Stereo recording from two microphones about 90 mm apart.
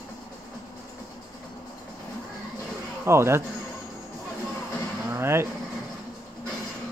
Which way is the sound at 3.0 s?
30° right (ahead or behind).